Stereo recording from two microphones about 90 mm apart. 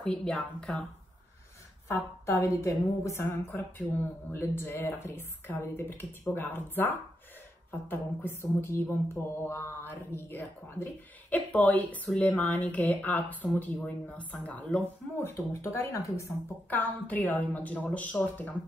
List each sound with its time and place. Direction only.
0.0 s a woman's voice: 10° left (ahead or behind)
1.9 s a sound: 30° left (ahead or behind)
16.7 s a woman's voice: 15° left (ahead or behind)